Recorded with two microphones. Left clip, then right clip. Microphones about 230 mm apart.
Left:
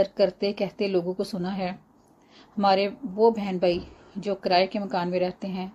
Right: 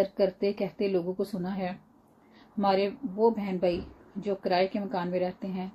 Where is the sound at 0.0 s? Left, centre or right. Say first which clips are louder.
Left 3 dB; left.